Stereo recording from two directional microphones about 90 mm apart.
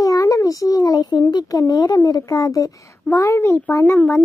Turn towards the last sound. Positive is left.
turn(degrees=30)  # may be behind; listen again after turning